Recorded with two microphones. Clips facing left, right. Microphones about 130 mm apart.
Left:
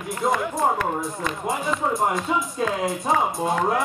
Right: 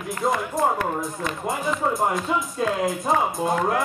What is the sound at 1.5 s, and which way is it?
Speech, centre (ahead or behind).